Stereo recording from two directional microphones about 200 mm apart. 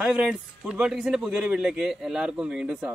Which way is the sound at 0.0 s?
5° right (ahead or behind).